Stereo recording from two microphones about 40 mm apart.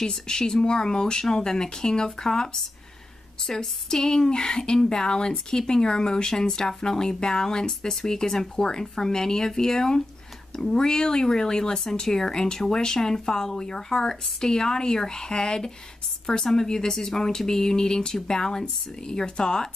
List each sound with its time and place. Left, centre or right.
0.0 s speech: centre